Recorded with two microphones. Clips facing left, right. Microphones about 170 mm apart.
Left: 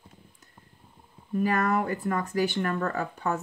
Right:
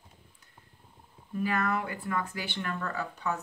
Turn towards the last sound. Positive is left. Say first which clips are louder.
# left 4 dB
turn(degrees=50)  # may be behind; listen again after turning